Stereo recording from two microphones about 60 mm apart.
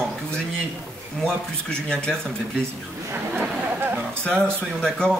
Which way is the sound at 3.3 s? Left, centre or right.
Right.